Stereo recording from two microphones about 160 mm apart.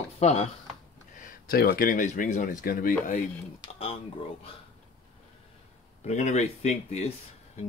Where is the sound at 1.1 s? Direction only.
60° left (ahead or behind).